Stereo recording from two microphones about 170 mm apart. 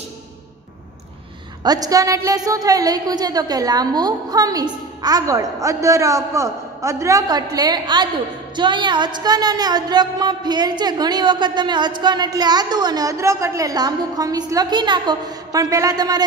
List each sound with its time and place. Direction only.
1.6 s speech: 20° right (ahead or behind)